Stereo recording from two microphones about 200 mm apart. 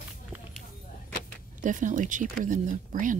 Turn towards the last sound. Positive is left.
turn(degrees=-40)  # may be behind; listen again after turning